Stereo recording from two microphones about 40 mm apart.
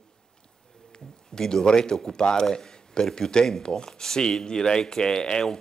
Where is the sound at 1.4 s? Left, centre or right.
Centre.